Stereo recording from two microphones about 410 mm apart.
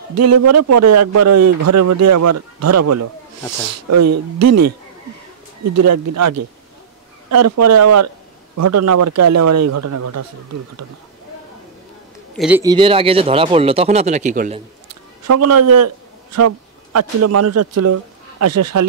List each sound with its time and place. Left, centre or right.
0.1 s a man's voice: right
12.4 s speech: centre
15.2 s a man's voice: right